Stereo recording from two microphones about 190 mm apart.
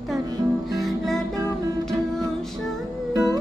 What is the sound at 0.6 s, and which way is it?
Music, centre (ahead or behind).